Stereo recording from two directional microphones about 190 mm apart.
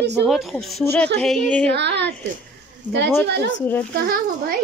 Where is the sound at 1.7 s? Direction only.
65° right (ahead or behind).